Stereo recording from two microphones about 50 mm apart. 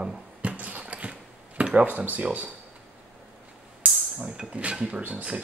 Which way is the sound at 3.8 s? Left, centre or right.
Right.